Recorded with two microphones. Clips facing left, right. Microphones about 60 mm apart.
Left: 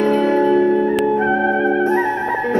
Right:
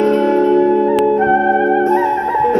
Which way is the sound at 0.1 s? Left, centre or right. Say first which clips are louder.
Right 2 dB; centre.